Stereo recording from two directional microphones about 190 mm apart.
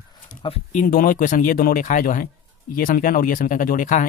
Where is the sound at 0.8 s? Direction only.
45° left (ahead or behind).